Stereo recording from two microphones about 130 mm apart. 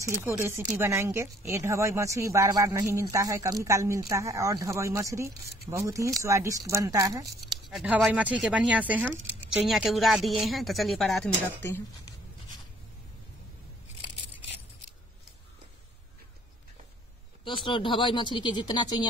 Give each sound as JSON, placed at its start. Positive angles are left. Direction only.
{"t": 0.0, "sound": "a woman's voice", "side_deg": -20}
{"t": 7.7, "sound": "speech", "side_deg": -5}
{"t": 11.4, "sound": "speech", "side_deg": 15}
{"t": 17.5, "sound": "speech", "side_deg": 40}